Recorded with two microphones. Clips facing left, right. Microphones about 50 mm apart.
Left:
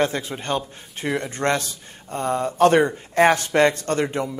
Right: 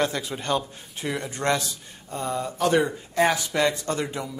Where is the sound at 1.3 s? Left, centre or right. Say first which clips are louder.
Left 2 dB; left.